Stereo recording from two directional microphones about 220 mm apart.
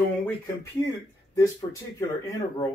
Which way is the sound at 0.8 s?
15° left (ahead or behind).